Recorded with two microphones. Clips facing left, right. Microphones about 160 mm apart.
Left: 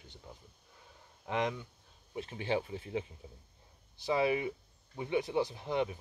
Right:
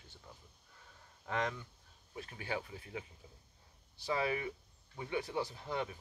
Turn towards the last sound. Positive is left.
turn(degrees=20)  # may be behind; listen again after turning